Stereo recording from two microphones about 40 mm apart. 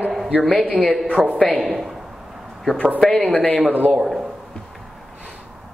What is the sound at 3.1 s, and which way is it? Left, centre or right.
Speech, left.